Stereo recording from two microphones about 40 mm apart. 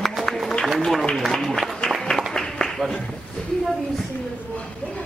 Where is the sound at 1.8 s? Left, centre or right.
Left.